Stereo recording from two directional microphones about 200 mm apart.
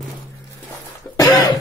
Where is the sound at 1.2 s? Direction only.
20° left (ahead or behind).